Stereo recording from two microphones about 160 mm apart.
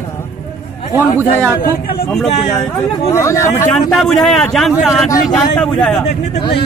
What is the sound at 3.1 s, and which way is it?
Speech, 20° left (ahead or behind).